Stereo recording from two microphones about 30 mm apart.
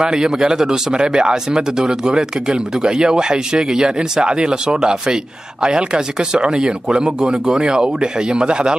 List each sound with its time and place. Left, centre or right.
0.0 s speech: right